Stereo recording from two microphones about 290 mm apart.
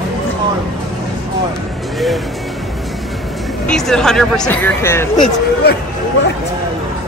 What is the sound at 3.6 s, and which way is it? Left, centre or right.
Speech, centre.